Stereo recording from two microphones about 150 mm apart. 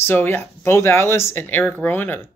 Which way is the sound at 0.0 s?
15° left (ahead or behind).